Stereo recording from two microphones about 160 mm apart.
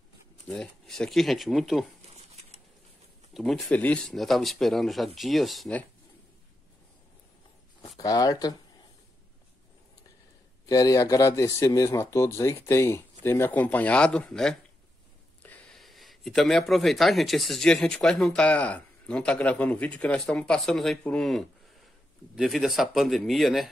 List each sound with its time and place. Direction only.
0.5 s speech: 5° left (ahead or behind)
3.3 s speech: centre (ahead or behind)
8.0 s speech: 20° left (ahead or behind)
10.7 s speech: 20° left (ahead or behind); by 23.7 s centre (ahead or behind)